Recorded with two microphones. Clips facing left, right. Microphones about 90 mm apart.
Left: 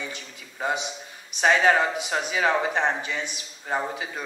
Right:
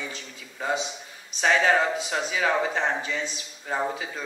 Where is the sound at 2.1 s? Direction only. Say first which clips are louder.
Left 3 dB; 20° left (ahead or behind).